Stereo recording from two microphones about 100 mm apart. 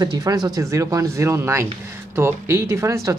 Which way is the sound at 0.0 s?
40° right (ahead or behind).